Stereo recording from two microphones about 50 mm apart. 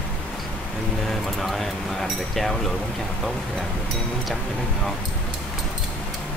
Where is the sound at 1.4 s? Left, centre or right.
Centre.